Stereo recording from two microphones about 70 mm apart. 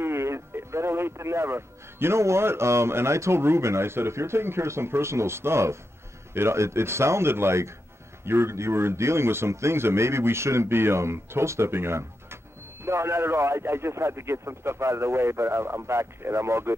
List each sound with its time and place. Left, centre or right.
0.0 s speech: right